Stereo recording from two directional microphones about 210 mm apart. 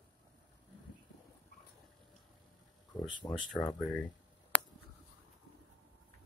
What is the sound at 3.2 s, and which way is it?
Speech, 20° left (ahead or behind).